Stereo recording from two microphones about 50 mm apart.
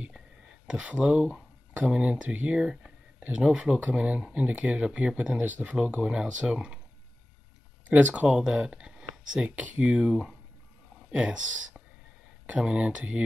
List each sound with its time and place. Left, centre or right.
0.1 s a sound: centre
2.0 s speech: right
6.0 s speech: centre
7.9 s speech: right
8.4 s speech: centre
8.8 s a sound: centre
9.6 s speech: right
9.9 s speech: centre
12.4 s speech: right